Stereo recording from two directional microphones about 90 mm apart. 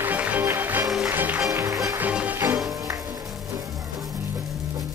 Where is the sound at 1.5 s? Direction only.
35° right (ahead or behind).